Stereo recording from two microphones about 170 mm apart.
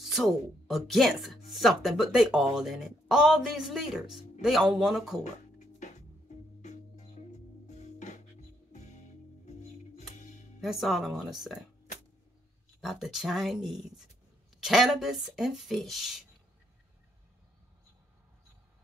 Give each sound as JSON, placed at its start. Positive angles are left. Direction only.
{"t": 0.0, "sound": "speech", "side_deg": 0}
{"t": 5.2, "sound": "music", "side_deg": 45}
{"t": 9.5, "sound": "music", "side_deg": 45}
{"t": 10.6, "sound": "speech", "side_deg": 0}
{"t": 12.8, "sound": "speech", "side_deg": 0}